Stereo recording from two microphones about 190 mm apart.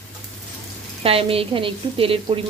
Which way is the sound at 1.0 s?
30° right (ahead or behind).